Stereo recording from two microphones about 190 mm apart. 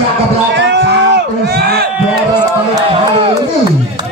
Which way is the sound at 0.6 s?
65° right (ahead or behind).